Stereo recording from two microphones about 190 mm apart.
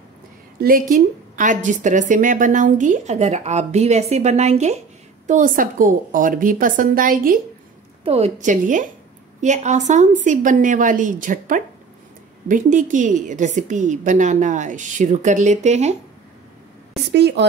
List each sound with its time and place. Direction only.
0.6 s a woman's voice: 50° right (ahead or behind)
8.0 s a woman's voice: 35° right (ahead or behind)
17.1 s a woman's voice: 65° right (ahead or behind)